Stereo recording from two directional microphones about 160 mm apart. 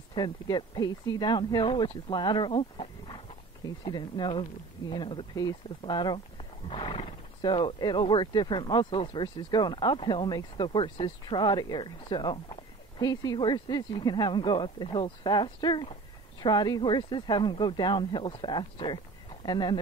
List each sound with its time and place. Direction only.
0.1 s speech: 25° left (ahead or behind)